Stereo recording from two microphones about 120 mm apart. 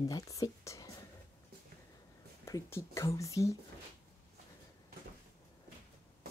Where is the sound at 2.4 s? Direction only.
25° left (ahead or behind).